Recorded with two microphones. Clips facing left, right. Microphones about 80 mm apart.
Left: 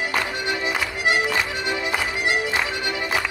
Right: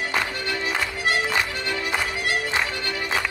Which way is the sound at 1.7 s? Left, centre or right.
Centre.